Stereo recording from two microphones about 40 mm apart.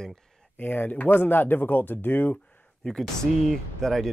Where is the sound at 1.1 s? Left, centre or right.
Left.